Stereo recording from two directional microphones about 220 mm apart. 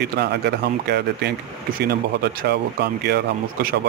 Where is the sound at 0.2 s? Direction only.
50° right (ahead or behind).